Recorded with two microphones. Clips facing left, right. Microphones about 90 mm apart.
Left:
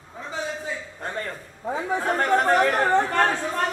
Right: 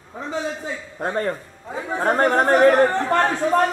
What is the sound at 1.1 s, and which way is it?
A man's voice, 35° right (ahead or behind).